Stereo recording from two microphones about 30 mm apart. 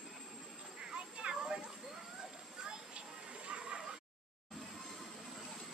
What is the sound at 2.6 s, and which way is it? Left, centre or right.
Children playing, right.